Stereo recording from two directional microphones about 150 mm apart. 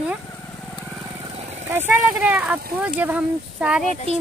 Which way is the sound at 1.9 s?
10° right (ahead or behind).